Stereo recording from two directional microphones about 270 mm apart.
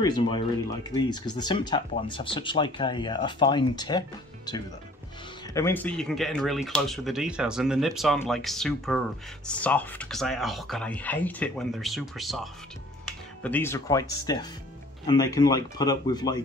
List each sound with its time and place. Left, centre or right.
0.0 s speech: centre
5.5 s speech: centre
13.4 s speech: centre